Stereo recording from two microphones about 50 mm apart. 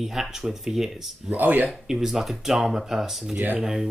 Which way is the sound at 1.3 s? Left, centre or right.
Right.